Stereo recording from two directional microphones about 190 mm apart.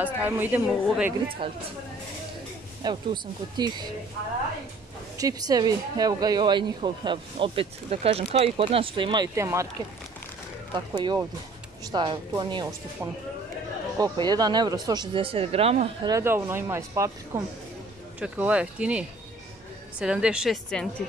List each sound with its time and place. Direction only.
0.0 s speech: 10° right (ahead or behind)
1.4 s speech: 25° right (ahead or behind)
2.8 s speech: 20° right (ahead or behind)
5.1 s speech: 20° right (ahead or behind)
10.7 s speech: 20° right (ahead or behind)
13.9 s speech: 20° right (ahead or behind)
16.1 s a woman's voice: 15° right (ahead or behind)